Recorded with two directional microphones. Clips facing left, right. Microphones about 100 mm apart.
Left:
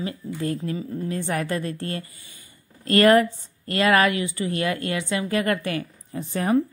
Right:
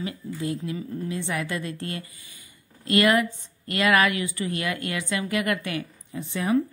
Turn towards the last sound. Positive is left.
turn(degrees=40)  # may be behind; listen again after turning